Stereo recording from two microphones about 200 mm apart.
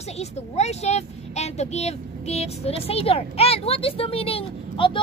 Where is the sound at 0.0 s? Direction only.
35° left (ahead or behind).